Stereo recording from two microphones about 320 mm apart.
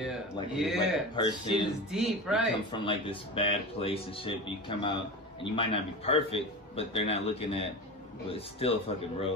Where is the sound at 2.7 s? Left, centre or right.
Centre.